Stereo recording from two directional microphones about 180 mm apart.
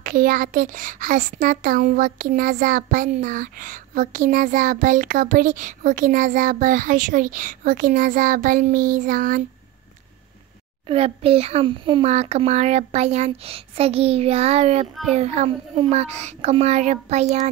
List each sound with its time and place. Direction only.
0.0 s a child's voice: 50° right (ahead or behind)
10.9 s a child's voice: 35° right (ahead or behind)